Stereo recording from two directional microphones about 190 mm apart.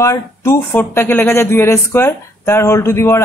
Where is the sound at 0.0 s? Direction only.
15° left (ahead or behind).